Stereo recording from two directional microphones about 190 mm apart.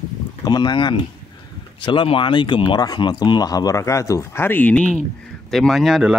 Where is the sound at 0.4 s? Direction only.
20° left (ahead or behind).